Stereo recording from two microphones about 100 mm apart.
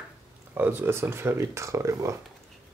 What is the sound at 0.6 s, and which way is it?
Speech, 20° right (ahead or behind).